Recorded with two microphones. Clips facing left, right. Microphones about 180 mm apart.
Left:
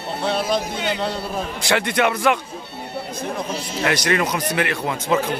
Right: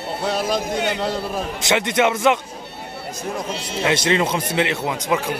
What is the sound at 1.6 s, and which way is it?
Speech, 20° right (ahead or behind).